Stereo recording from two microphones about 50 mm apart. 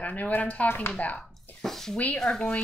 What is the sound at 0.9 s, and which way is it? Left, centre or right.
Speech, left.